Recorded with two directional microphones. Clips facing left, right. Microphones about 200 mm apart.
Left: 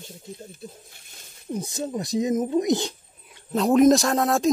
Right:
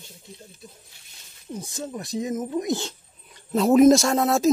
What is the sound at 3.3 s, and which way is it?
Speech, centre (ahead or behind).